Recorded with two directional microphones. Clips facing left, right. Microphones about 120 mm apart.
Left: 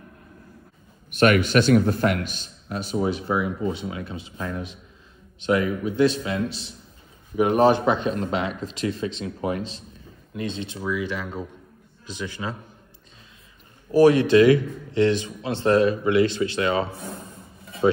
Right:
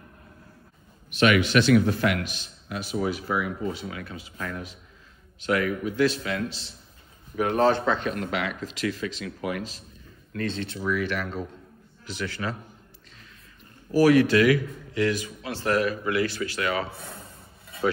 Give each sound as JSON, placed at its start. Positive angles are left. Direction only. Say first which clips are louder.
{"t": 1.1, "sound": "a man's voice", "louder": "left 2 dB", "side_deg": 45}
{"t": 13.9, "sound": "a man's voice", "louder": "left 3 dB", "side_deg": 25}